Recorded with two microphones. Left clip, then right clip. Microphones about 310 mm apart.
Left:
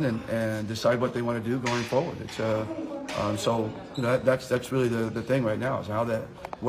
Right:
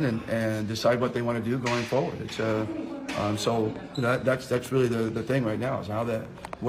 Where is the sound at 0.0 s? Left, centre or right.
Centre.